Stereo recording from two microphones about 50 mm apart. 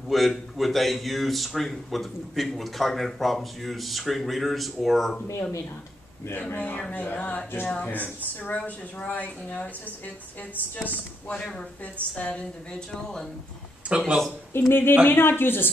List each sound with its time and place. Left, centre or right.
0.1 s a man's voice: centre
6.5 s speech: left
7.2 s a woman's voice: left
7.8 s a woman's voice: left
12.9 s speech: centre
13.8 s speech: right
14.5 s speech: left